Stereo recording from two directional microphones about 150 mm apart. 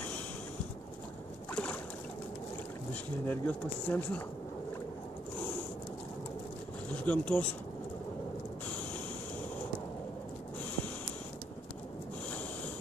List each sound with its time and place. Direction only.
1.5 s boat: 10° left (ahead or behind)
2.9 s speech: 10° left (ahead or behind)
6.9 s speech: 10° left (ahead or behind)